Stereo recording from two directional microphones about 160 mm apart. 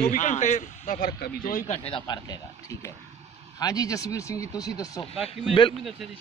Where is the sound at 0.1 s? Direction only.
50° left (ahead or behind).